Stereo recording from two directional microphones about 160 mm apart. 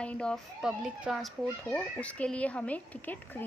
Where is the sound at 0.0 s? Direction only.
5° left (ahead or behind).